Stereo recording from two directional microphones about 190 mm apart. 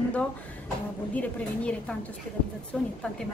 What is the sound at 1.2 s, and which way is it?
A man's voice, 5° left (ahead or behind).